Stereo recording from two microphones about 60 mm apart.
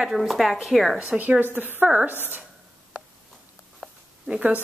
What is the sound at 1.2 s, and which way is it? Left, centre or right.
A woman's voice, right.